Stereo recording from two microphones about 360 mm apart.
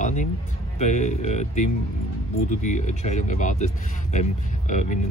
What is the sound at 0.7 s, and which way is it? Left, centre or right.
Speech, centre.